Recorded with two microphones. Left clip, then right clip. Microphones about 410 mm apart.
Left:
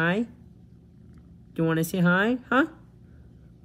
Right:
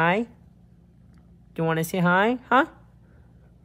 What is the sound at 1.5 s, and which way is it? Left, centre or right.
Speech, centre.